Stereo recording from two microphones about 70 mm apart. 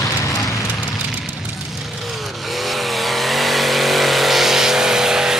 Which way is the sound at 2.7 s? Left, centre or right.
Centre.